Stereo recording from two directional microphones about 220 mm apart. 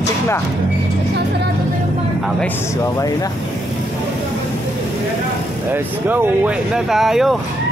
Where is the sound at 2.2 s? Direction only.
10° left (ahead or behind).